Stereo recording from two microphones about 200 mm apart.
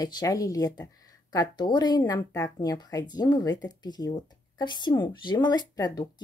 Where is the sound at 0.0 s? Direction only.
20° left (ahead or behind).